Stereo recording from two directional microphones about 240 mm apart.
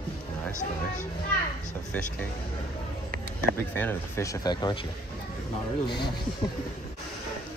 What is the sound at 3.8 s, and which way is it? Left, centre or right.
Speech, centre.